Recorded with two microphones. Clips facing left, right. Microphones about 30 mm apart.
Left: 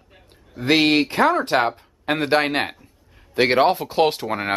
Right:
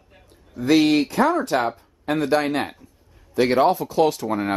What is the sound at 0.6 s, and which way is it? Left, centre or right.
Speech, left.